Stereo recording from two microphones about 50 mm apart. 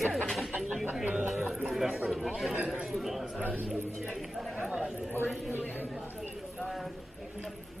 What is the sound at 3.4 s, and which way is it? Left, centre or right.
Speech, right.